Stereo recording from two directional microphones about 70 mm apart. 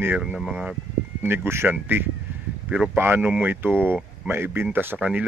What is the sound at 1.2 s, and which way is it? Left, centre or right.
Speech, right.